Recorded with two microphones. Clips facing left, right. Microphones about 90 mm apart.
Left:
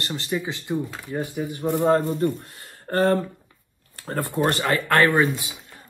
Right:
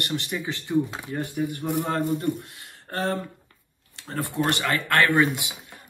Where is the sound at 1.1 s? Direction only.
20° left (ahead or behind).